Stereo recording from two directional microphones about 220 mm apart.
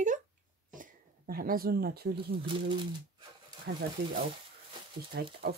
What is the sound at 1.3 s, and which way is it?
Speech, 40° right (ahead or behind).